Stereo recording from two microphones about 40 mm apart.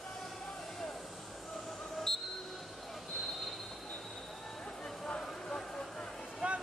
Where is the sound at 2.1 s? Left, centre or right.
Centre.